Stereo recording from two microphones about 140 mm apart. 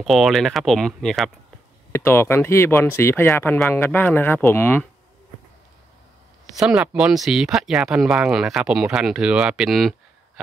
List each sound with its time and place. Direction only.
0.0 s speech: centre (ahead or behind)
1.9 s speech: 15° left (ahead or behind)
6.5 s speech: 5° right (ahead or behind)